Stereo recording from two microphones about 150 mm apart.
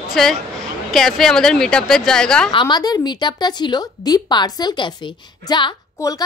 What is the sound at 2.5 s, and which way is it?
A woman's voice, 30° left (ahead or behind).